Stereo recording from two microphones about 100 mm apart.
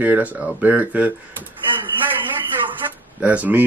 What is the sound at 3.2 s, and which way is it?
Speech, 15° right (ahead or behind).